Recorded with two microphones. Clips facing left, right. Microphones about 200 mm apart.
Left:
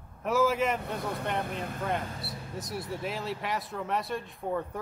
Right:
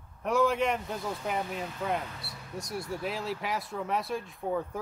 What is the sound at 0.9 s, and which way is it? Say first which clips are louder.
Speech: left 1 dB; 60° left (ahead or behind).